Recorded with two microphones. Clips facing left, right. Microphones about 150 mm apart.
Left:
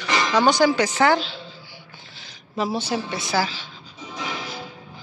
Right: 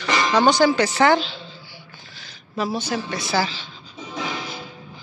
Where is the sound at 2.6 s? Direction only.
25° left (ahead or behind).